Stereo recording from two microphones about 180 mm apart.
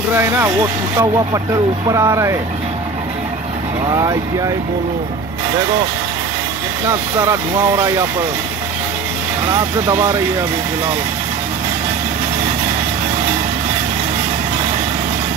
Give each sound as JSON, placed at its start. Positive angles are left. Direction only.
{"t": 0.1, "sound": "speech", "side_deg": -15}
{"t": 3.8, "sound": "speech", "side_deg": -20}
{"t": 6.9, "sound": "speech", "side_deg": -15}
{"t": 9.5, "sound": "speech", "side_deg": -15}